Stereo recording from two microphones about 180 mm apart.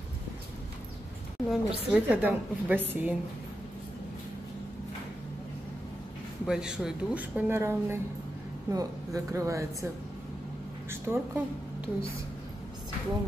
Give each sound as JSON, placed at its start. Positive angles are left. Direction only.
{"t": 1.5, "sound": "a woman's voice", "side_deg": -5}
{"t": 6.4, "sound": "a woman's voice", "side_deg": -5}
{"t": 10.9, "sound": "a woman's voice", "side_deg": -15}